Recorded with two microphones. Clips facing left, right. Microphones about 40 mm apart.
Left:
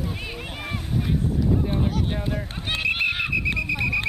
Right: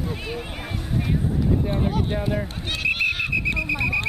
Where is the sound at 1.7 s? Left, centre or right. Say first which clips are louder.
Right 1 dB; centre.